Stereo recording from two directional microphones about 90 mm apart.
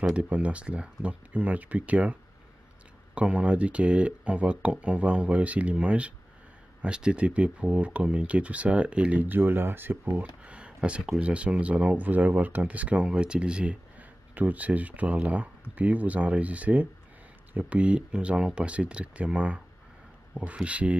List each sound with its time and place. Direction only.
0.0 s speech: 15° right (ahead or behind)
3.2 s speech: 15° right (ahead or behind)